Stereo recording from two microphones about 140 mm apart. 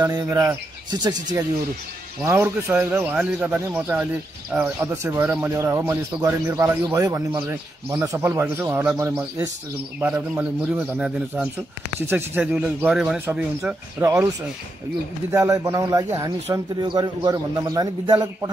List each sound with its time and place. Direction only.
0.0 s speech: 25° right (ahead or behind)
2.2 s speech: 15° right (ahead or behind)
15.3 s speech: 20° right (ahead or behind)